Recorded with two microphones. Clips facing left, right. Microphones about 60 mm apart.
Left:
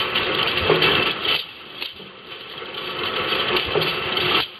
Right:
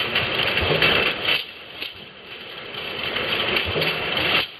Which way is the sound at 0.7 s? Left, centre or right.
Left.